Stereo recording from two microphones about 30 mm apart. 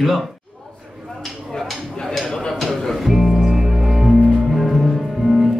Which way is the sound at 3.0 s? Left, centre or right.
Centre.